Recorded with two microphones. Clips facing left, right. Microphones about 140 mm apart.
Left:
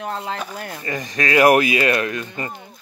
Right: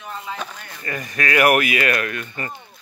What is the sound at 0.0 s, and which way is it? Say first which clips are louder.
Speech: left 5 dB; 80° left.